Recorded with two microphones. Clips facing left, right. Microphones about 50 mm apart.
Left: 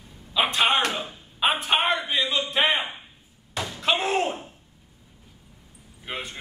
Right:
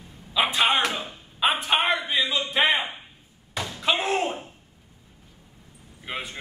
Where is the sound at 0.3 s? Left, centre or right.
Centre.